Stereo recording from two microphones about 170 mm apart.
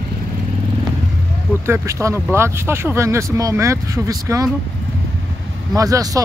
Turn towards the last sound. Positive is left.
turn(degrees=-20)  # may be behind; listen again after turning